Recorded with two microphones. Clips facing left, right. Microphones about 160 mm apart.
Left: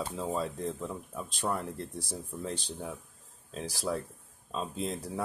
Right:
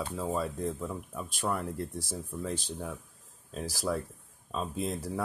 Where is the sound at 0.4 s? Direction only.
5° right (ahead or behind).